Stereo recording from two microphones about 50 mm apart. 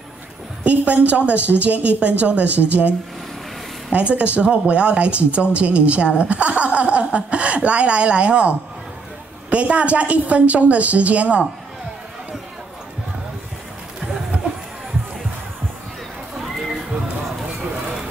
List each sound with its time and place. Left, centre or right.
0.7 s a woman's voice: right
3.9 s a woman's voice: right
16.3 s a sound: centre